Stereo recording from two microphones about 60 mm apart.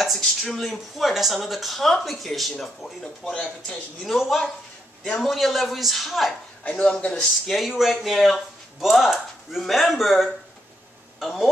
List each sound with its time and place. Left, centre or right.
0.0 s speech: centre
3.3 s speech: centre
4.0 s speech: centre
6.7 s a man's voice: centre
7.2 s a man's voice: centre